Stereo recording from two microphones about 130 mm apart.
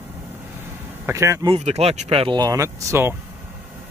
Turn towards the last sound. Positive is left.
turn(degrees=-25)  # may be behind; listen again after turning